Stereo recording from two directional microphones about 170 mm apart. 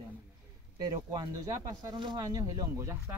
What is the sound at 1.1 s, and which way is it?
Speech, 25° right (ahead or behind).